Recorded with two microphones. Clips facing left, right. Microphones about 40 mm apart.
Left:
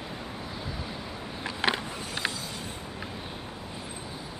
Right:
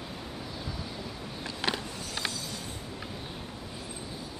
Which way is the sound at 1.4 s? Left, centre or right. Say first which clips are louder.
Left 4 dB; centre.